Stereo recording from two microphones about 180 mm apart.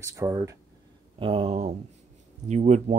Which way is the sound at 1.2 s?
30° right (ahead or behind).